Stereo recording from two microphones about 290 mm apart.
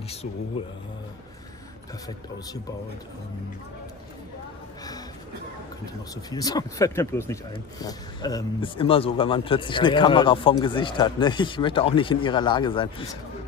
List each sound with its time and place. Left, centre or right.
6.3 s speech: centre